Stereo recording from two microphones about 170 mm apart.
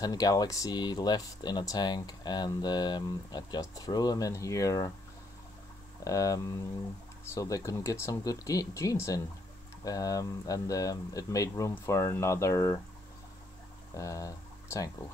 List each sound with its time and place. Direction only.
0.0 s speech: 20° left (ahead or behind)
6.0 s speech: 20° left (ahead or behind)
13.9 s speech: 20° left (ahead or behind)